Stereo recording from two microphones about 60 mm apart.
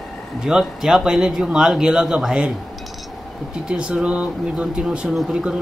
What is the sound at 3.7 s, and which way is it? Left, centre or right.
Speech, centre.